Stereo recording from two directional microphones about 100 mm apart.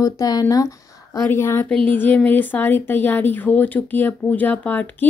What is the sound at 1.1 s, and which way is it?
Speech, 25° left (ahead or behind).